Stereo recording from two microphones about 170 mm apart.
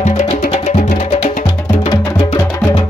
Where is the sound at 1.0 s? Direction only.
35° left (ahead or behind).